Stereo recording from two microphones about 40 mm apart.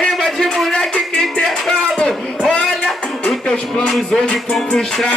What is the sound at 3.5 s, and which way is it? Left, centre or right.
Music, centre.